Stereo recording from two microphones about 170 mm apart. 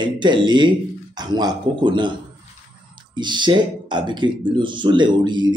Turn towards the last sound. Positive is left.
turn(degrees=-25)  # may be behind; listen again after turning